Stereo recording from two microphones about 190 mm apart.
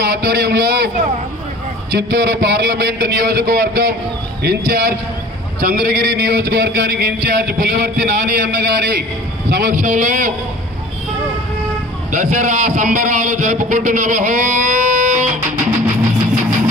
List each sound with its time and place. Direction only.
0.0 s speech: 55° right (ahead or behind)
1.9 s a man's voice: 60° right (ahead or behind); by 10.3 s 45° right (ahead or behind)
12.1 s a man's voice: 40° right (ahead or behind)